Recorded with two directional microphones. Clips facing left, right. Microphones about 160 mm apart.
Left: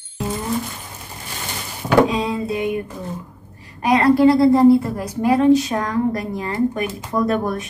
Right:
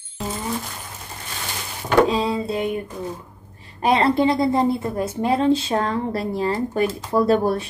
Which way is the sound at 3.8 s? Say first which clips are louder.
Left 4 dB; 25° right (ahead or behind).